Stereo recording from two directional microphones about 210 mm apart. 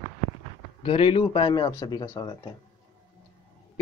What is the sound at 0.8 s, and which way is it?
Speech, 25° left (ahead or behind).